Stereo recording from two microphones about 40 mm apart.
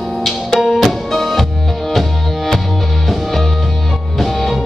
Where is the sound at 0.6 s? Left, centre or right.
Centre.